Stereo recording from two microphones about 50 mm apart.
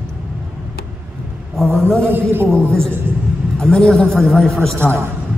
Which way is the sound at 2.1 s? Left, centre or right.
Right.